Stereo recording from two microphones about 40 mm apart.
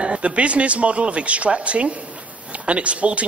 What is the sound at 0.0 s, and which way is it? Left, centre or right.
A man's voice, right.